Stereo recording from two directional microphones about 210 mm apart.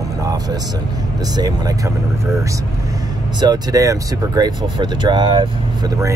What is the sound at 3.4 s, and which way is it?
Speech, 20° right (ahead or behind).